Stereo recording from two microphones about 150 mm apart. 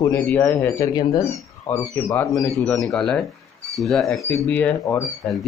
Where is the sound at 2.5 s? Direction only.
Centre (ahead or behind).